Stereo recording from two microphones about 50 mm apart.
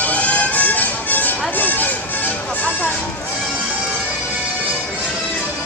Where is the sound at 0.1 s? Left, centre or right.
Left.